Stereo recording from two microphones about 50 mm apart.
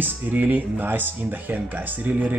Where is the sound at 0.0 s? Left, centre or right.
Right.